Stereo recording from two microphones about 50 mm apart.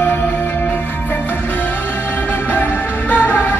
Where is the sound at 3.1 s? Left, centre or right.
Left.